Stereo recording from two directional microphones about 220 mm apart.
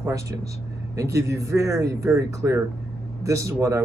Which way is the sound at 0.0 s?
15° right (ahead or behind).